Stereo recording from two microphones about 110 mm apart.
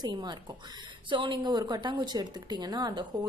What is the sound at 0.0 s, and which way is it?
A woman's voice, 40° right (ahead or behind).